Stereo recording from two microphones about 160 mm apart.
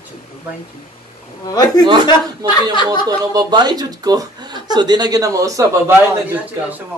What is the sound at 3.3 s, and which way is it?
A man's voice, 25° right (ahead or behind).